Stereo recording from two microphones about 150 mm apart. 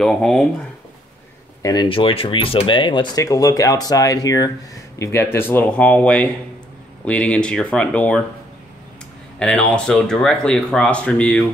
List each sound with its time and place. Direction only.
0.0 s speech: 5° left (ahead or behind)
1.6 s speech: 25° left (ahead or behind); by 8.2 s 10° left (ahead or behind)
9.4 s speech: 5° left (ahead or behind)